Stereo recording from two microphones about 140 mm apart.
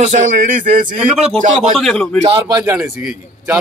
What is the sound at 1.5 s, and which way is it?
Speech, centre (ahead or behind).